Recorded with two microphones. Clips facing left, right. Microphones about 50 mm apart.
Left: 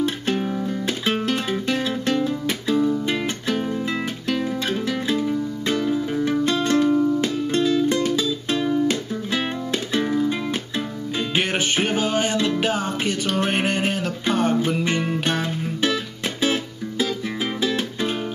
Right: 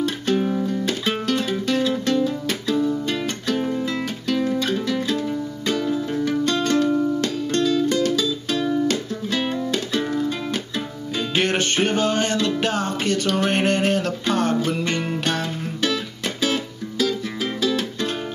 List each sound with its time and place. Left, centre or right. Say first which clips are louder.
0.0 s music: right 1 dB; centre
11.3 s music: right 2 dB; centre
17.6 s music: right 2 dB; centre